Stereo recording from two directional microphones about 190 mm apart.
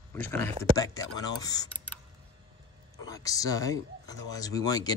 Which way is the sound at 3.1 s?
20° left (ahead or behind).